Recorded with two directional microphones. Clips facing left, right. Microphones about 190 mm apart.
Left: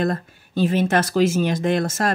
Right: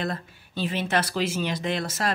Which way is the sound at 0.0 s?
45° left (ahead or behind).